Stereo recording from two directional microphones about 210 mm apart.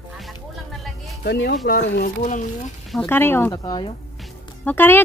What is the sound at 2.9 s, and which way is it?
Speech, 5° left (ahead or behind).